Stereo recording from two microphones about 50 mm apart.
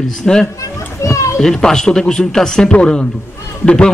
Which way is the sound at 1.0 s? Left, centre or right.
Left.